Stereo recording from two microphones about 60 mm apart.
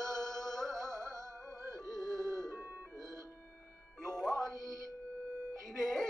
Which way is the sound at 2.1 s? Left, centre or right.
Right.